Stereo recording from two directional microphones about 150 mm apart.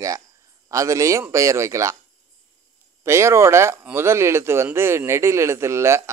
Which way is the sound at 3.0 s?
20° right (ahead or behind).